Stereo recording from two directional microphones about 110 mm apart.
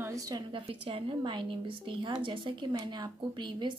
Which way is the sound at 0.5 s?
55° right (ahead or behind).